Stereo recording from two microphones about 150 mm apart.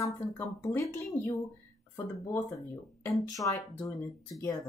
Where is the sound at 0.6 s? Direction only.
20° left (ahead or behind).